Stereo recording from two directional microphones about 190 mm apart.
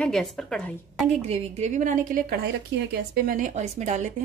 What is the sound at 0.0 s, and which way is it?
Speech, 5° left (ahead or behind).